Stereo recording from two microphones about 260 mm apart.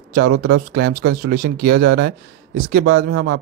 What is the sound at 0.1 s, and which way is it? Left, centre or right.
Speech, right.